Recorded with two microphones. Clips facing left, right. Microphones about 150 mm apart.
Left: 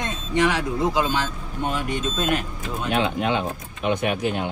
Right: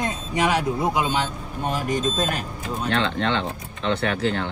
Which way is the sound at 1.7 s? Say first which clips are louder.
Right 3 dB; 40° right (ahead or behind).